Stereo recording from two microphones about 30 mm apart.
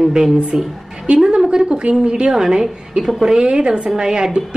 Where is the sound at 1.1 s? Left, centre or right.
Right.